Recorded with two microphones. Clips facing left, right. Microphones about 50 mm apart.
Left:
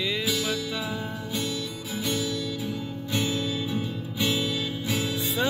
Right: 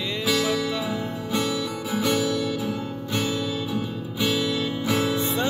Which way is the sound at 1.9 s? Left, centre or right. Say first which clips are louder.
Right 6 dB; right.